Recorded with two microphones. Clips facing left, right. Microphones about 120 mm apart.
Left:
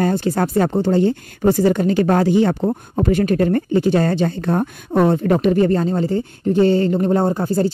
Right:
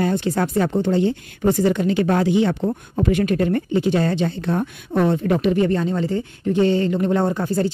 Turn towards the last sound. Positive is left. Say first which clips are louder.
# left 2 dB
turn(degrees=35)  # may be behind; listen again after turning